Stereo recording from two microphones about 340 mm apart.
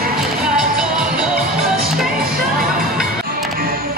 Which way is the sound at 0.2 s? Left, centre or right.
Centre.